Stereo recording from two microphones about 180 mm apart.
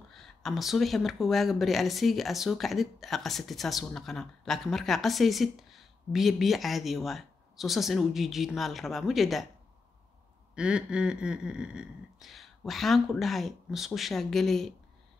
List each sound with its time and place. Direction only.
0.1 s speech: centre (ahead or behind)
10.5 s speech: 5° right (ahead or behind)